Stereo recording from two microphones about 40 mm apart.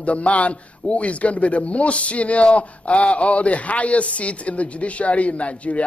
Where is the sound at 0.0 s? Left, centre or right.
Left.